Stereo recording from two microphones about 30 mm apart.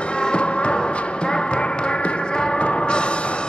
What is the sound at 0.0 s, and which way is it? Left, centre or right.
Music, left.